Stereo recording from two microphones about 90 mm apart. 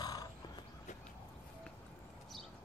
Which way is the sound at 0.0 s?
45° left (ahead or behind).